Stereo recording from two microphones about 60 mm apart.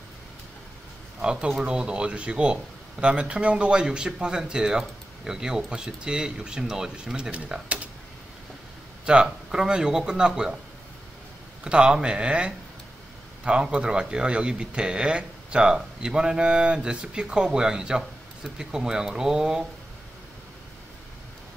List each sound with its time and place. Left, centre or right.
1.2 s speech: centre
7.2 s speech: right
7.6 s a sound: right
9.0 s speech: centre
11.6 s speech: centre